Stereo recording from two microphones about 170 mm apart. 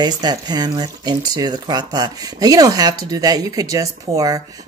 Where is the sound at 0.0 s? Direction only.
25° right (ahead or behind).